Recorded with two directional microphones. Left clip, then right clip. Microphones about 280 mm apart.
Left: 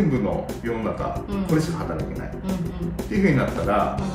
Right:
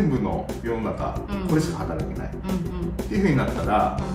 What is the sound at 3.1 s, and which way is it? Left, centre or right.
Speech, centre.